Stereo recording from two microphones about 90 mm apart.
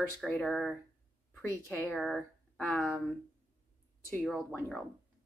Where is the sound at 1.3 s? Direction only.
20° left (ahead or behind).